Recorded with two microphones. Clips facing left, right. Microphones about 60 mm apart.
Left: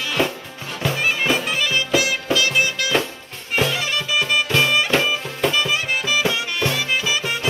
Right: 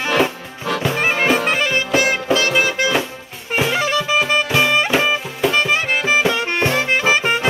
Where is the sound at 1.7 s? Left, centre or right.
Right.